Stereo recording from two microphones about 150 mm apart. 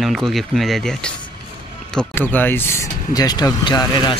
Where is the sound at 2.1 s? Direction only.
15° left (ahead or behind).